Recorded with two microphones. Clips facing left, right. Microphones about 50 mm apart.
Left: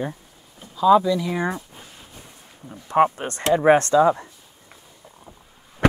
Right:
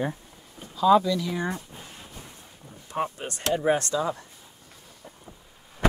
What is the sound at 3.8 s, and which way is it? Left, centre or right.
Speech, left.